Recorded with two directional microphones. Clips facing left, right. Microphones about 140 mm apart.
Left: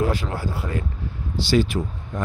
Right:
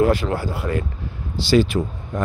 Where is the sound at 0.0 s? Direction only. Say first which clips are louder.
Right 6 dB; 70° right (ahead or behind).